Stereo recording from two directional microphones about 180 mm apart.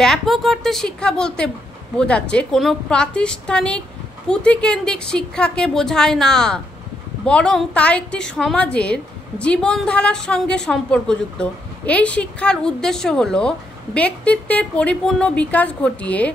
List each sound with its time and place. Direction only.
0.0 s a woman's voice: centre (ahead or behind)